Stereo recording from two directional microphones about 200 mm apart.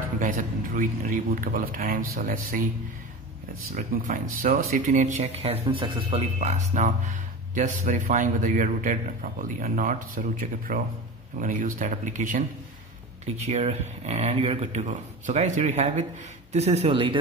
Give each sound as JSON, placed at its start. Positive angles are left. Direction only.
{"t": 0.2, "sound": "speech", "side_deg": -45}
{"t": 3.7, "sound": "speech", "side_deg": -45}